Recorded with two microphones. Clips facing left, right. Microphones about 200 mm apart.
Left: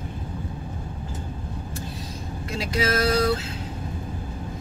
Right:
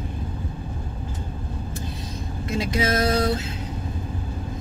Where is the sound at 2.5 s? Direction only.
20° right (ahead or behind).